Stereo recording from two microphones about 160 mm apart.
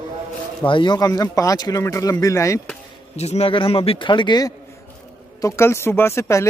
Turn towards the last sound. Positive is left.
turn(degrees=15)  # may be behind; listen again after turning